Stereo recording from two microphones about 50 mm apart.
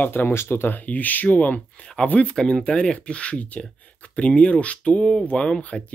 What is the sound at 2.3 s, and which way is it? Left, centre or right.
Speech, centre.